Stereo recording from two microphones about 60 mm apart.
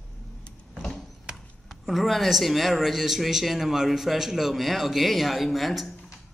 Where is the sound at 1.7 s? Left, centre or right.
Centre.